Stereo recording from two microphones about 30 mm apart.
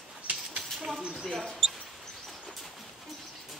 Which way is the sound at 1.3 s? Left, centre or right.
Centre.